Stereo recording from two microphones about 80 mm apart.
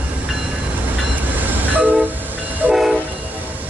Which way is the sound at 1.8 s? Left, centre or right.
Right.